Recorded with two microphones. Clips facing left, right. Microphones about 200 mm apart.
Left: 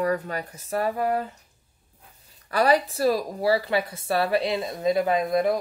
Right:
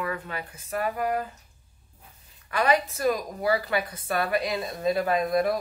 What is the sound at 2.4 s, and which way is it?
A woman's voice, 35° left (ahead or behind).